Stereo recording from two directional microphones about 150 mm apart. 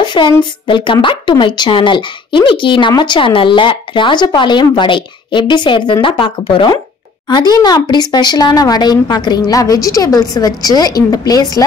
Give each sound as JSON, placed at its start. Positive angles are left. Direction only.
{"t": 0.0, "sound": "a woman's voice", "side_deg": 30}